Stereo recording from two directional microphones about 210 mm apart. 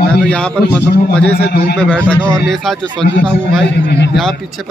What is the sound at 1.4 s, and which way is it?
Speech, 50° left (ahead or behind).